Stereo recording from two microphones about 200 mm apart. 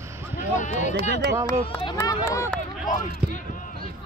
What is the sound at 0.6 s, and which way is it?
Speech, 35° left (ahead or behind).